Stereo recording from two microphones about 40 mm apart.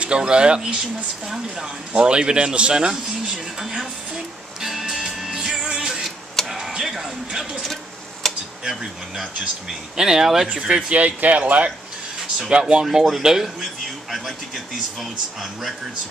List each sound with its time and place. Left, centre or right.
0.2 s a man's voice: right
2.0 s a man's voice: right
4.6 s music: centre
6.4 s a sound: centre
6.8 s speech: centre
7.6 s a sound: centre
8.6 s speech: centre
10.5 s a man's voice: right
10.9 s speech: right
12.4 s a man's voice: right
12.8 s speech: centre